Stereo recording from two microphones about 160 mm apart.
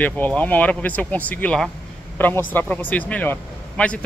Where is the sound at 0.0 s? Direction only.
10° left (ahead or behind).